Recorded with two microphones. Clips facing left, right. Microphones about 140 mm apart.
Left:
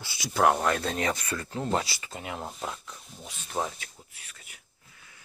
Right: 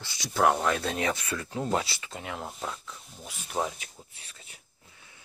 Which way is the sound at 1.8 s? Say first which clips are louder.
Even; centre (ahead or behind).